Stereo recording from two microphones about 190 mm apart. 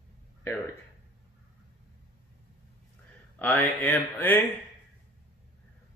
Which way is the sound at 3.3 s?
10° left (ahead or behind).